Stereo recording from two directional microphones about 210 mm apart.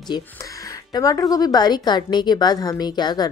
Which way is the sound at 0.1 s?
20° left (ahead or behind).